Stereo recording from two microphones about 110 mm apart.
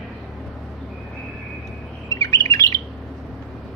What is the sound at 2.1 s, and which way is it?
Bird, 30° left (ahead or behind).